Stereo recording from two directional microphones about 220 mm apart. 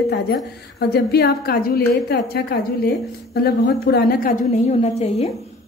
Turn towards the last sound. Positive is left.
turn(degrees=30)  # may be behind; listen again after turning